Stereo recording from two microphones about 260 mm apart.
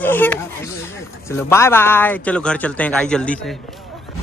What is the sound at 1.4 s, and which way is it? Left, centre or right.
A man's voice, centre.